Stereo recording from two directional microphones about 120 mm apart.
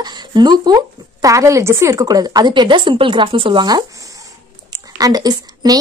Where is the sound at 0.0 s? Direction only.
35° right (ahead or behind).